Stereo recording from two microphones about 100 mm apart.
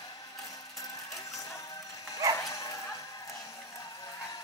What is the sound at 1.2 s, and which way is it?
Music, 35° left (ahead or behind).